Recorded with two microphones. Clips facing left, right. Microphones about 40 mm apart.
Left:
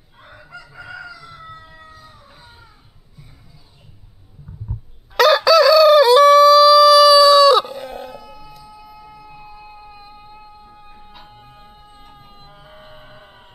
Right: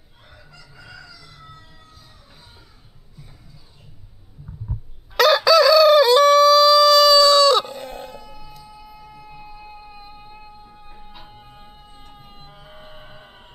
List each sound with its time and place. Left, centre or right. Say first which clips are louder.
0.2 s crowing: left 8 dB; left
5.1 s chicken: left 2 dB; centre